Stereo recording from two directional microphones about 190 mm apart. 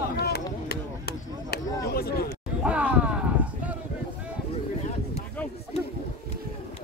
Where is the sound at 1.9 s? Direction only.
55° left (ahead or behind).